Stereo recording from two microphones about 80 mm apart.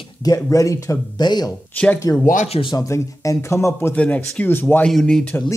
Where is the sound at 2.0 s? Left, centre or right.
Left.